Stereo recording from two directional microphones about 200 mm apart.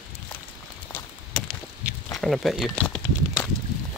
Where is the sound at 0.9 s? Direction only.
5° left (ahead or behind).